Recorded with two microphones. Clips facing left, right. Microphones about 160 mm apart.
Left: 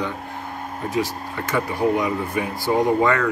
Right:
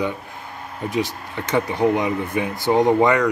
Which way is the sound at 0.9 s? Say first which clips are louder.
Even; 20° right (ahead or behind).